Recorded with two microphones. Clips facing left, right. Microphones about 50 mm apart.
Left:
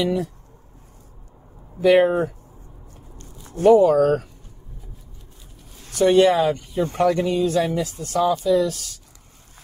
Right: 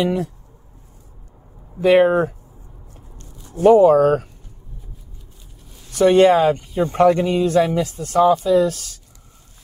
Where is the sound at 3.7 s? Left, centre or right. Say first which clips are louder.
Right 3 dB; right.